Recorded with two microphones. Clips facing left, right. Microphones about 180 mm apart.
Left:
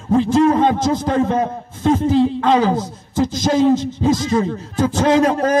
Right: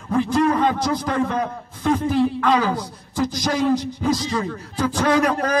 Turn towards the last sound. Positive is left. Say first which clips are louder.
# left 4 dB
turn(degrees=25)  # may be behind; listen again after turning